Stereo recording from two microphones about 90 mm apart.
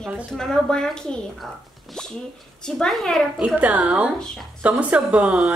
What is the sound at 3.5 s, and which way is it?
Speech, 15° right (ahead or behind).